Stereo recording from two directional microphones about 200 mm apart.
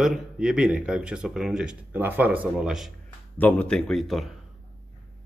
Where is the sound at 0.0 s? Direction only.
5° right (ahead or behind).